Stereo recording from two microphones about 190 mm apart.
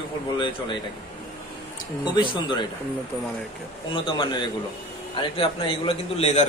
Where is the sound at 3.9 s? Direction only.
25° left (ahead or behind).